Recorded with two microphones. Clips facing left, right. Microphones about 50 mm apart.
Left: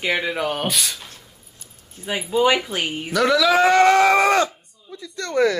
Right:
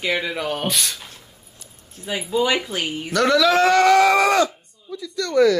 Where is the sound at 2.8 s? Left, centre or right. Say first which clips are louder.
Even; centre.